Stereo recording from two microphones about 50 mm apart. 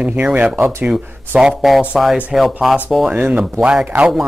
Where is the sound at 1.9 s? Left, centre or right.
Centre.